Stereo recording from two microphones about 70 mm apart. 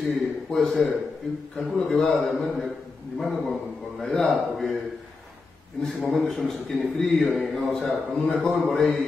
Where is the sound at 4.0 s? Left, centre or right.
Centre.